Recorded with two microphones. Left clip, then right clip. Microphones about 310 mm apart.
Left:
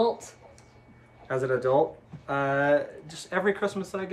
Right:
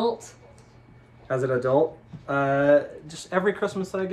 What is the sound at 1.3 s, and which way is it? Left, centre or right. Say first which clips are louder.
Speech: right 2 dB; centre.